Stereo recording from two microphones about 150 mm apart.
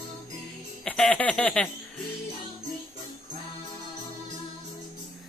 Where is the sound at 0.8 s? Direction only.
10° left (ahead or behind).